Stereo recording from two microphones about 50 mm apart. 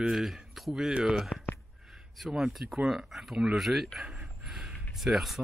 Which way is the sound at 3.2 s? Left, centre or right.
Centre.